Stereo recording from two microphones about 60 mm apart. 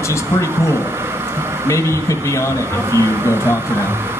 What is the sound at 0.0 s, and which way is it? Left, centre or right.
Speech, left.